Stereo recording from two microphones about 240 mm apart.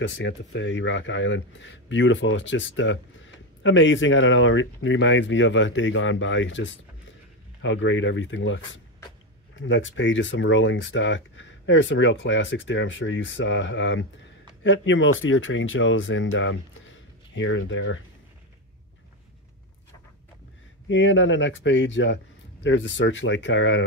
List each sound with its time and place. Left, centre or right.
0.0 s speech: left
20.9 s speech: left